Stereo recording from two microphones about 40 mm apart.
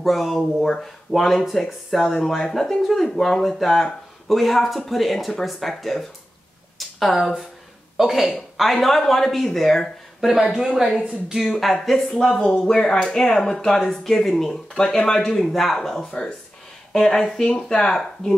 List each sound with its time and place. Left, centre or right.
0.0 s speech: centre
10.3 s speech: centre
12.2 s speech: centre